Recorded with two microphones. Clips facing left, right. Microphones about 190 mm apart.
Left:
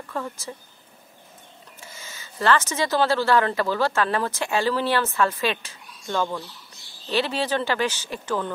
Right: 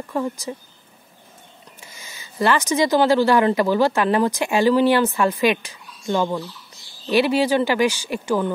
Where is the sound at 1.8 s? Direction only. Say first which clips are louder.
Left 2 dB; 15° right (ahead or behind).